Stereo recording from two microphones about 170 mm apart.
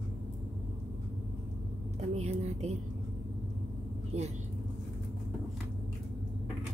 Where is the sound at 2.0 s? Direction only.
40° right (ahead or behind).